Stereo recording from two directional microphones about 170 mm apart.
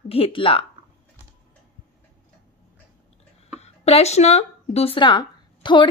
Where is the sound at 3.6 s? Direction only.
40° left (ahead or behind).